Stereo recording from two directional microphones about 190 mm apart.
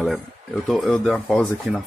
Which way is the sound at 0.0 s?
Centre (ahead or behind).